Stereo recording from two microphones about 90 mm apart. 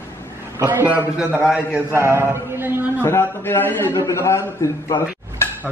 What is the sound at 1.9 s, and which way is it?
Mantra, 30° right (ahead or behind).